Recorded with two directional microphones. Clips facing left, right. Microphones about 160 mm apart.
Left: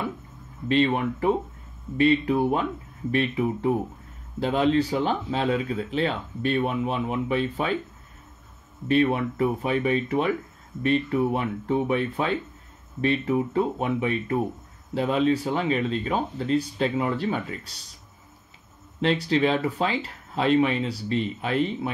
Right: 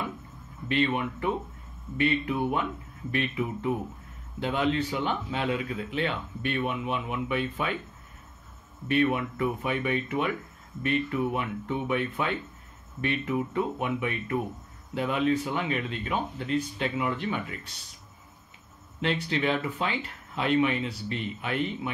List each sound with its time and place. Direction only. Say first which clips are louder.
0.7 s speech: left 5 dB; 30° left (ahead or behind)
8.8 s speech: left 4 dB; 30° left (ahead or behind)
18.9 s speech: left 6 dB; 35° left (ahead or behind)